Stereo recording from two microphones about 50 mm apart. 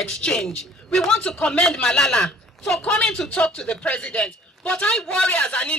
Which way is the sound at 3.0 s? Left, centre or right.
Centre.